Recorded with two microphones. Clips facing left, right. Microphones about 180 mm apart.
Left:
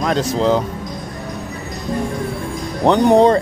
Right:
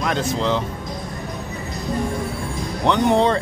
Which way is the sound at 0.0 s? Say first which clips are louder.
Left 5 dB; 40° left (ahead or behind).